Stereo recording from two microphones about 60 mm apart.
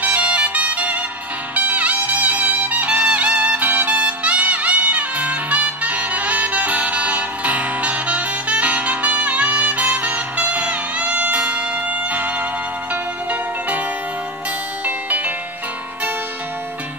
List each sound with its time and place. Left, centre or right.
0.0 s music: right
14.9 s music: right